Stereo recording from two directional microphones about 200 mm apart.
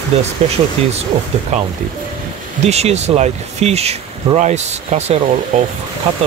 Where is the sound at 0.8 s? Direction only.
30° right (ahead or behind).